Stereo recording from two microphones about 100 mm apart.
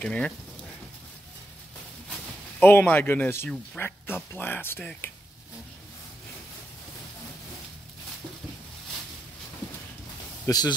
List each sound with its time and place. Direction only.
0.0 s speech: 10° left (ahead or behind)
2.6 s speech: 20° left (ahead or behind)
10.5 s speech: 30° left (ahead or behind)